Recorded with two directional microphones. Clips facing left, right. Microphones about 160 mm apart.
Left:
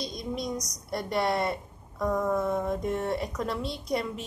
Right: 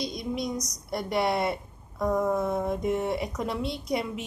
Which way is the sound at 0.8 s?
10° right (ahead or behind).